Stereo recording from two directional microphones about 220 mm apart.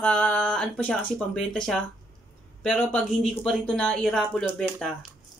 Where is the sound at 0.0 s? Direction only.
5° left (ahead or behind).